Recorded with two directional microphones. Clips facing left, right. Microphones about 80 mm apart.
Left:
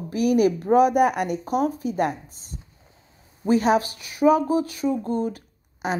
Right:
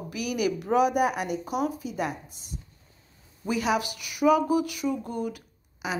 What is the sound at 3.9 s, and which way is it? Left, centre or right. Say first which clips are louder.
Speech: left 3 dB; left.